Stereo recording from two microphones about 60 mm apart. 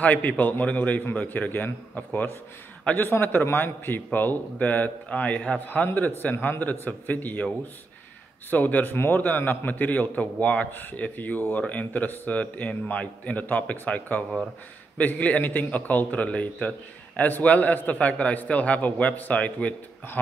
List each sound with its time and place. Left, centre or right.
0.0 s a man's voice: left
2.8 s a man's voice: left
3.1 s a man's voice: left
8.5 s a man's voice: left
8.9 s a man's voice: left